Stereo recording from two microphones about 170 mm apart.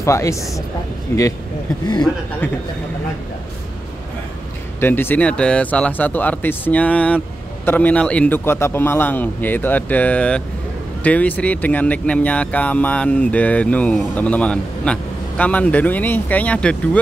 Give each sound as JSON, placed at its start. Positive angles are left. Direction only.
{"t": 0.0, "sound": "speech", "side_deg": 15}
{"t": 4.7, "sound": "speech", "side_deg": 10}